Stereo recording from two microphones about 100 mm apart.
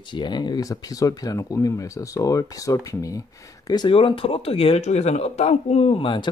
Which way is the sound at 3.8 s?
60° left (ahead or behind).